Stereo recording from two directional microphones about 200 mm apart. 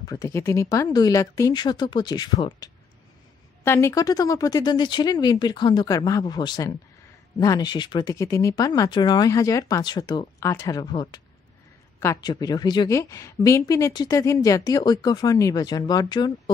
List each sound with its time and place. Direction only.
0.0 s a woman's voice: 15° left (ahead or behind)